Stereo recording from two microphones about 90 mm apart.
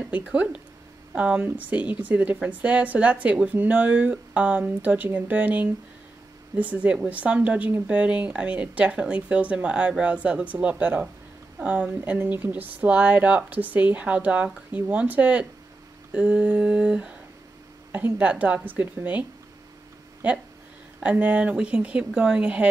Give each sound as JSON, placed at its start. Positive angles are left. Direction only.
{"t": 0.3, "sound": "a woman's voice", "side_deg": -15}
{"t": 21.0, "sound": "a woman's voice", "side_deg": -15}